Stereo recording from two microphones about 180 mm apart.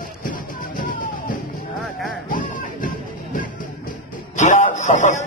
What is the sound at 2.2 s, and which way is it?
Music, 50° left (ahead or behind).